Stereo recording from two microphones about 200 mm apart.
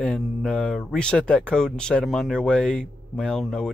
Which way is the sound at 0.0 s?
5° left (ahead or behind).